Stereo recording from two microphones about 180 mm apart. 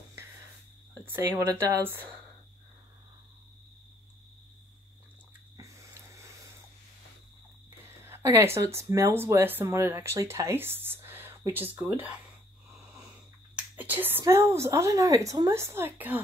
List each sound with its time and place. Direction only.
1.0 s speech: 10° right (ahead or behind)
5.6 s a sound: 15° right (ahead or behind)
8.0 s speech: 15° right (ahead or behind)
13.7 s speech: 10° right (ahead or behind)